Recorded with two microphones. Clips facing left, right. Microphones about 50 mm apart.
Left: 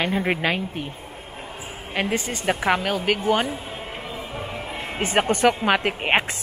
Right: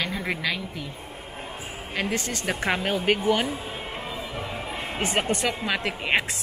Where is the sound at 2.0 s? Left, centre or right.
Centre.